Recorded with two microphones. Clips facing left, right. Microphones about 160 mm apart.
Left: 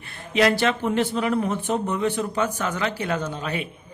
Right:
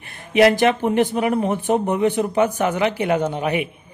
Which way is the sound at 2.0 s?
15° right (ahead or behind).